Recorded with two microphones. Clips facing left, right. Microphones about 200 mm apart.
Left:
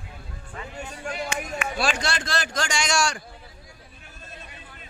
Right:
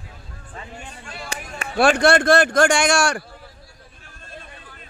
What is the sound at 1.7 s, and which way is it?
A man's voice, 60° right (ahead or behind).